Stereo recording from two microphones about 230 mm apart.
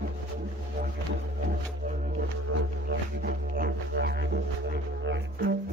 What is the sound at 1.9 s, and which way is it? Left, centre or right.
Music, right.